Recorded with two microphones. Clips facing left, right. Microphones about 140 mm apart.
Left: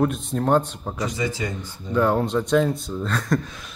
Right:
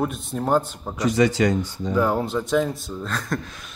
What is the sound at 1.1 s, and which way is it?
Speech, 75° right (ahead or behind).